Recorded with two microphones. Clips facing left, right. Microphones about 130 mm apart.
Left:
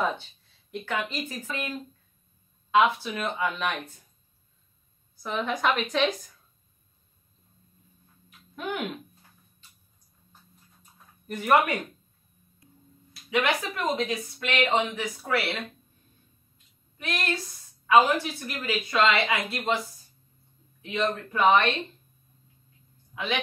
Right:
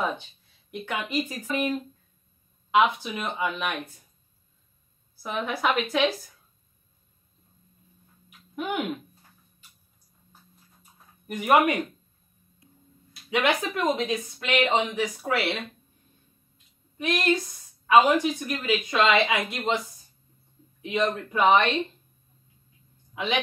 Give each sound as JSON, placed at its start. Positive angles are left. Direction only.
{"t": 0.7, "sound": "speech", "side_deg": -15}
{"t": 2.7, "sound": "speech", "side_deg": -15}
{"t": 5.2, "sound": "a woman's voice", "side_deg": -5}
{"t": 8.3, "sound": "a sound", "side_deg": -15}
{"t": 10.8, "sound": "a sound", "side_deg": -15}
{"t": 13.3, "sound": "speech", "side_deg": -20}
{"t": 17.0, "sound": "speech", "side_deg": -15}
{"t": 20.8, "sound": "speech", "side_deg": -15}
{"t": 23.1, "sound": "a woman's voice", "side_deg": -20}